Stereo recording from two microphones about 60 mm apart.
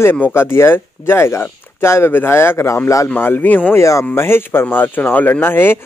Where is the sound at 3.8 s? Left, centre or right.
Left.